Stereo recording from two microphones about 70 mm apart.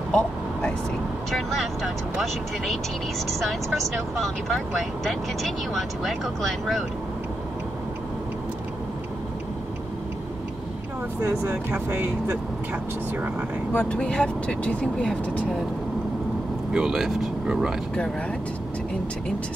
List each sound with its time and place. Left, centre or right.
0.1 s vehicle: centre
1.3 s speech: centre
4.2 s speech: centre
11.5 s speech: right
13.7 s speech: centre
16.7 s speech: centre